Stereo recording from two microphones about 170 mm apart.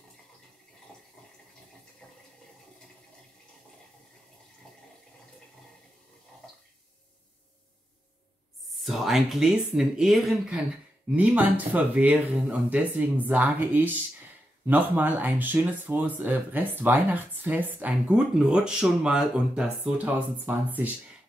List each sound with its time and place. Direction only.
4.6 s water: 5° left (ahead or behind)
8.8 s speech: centre (ahead or behind)